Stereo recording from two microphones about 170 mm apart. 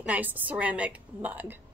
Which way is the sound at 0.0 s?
10° right (ahead or behind).